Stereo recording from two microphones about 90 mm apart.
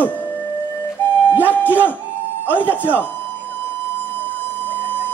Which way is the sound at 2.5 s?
20° left (ahead or behind).